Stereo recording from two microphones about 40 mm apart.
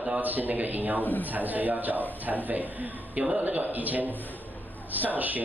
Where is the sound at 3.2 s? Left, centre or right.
Right.